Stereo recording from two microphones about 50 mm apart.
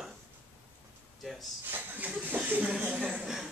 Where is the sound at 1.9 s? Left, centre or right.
Right.